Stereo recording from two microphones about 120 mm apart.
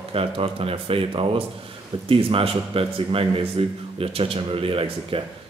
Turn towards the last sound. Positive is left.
turn(degrees=-50)  # may be behind; listen again after turning